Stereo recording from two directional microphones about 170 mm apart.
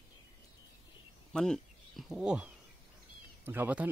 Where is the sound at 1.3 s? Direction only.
5° left (ahead or behind).